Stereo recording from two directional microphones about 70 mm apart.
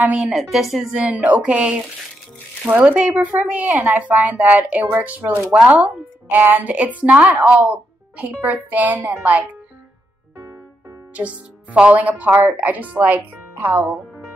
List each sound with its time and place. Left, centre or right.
0.0 s speech: right
0.3 s a woman's voice: centre
0.9 s speech: centre
11.1 s speech: centre